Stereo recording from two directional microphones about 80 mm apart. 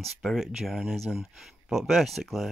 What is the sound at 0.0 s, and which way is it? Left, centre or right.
Speech, centre.